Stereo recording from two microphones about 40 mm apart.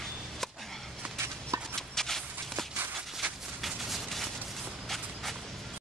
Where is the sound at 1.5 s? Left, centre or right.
Right.